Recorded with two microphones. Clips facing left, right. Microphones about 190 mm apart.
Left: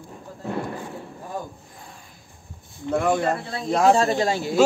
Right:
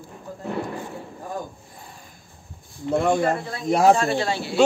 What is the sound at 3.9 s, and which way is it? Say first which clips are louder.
Speech: left 2 dB; 40° left (ahead or behind).